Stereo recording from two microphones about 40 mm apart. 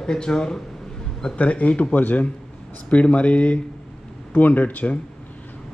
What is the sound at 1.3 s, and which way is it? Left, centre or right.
Speech, left.